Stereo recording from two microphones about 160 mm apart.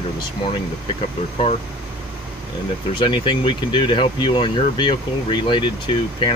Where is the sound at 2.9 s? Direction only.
30° left (ahead or behind).